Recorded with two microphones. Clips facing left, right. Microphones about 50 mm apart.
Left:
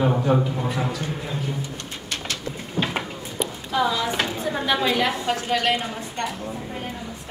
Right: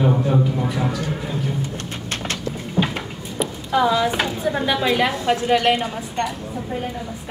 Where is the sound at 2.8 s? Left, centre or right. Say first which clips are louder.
Right 4 dB; right.